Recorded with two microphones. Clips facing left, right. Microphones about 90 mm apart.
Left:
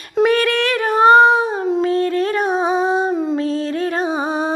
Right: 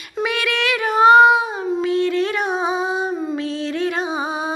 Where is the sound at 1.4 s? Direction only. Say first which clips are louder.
Left 4 dB; 40° left (ahead or behind).